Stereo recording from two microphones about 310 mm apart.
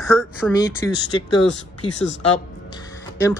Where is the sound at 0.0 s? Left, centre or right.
Centre.